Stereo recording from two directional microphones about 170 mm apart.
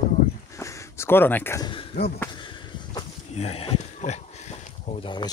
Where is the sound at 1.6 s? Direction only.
30° left (ahead or behind).